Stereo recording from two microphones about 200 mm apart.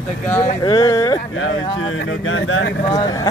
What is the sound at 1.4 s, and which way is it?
Speech, 85° left.